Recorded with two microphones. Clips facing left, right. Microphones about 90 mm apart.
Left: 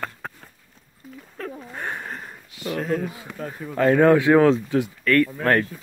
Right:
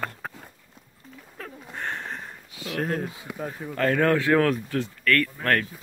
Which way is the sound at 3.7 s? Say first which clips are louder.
Left 6 dB; 15° left (ahead or behind).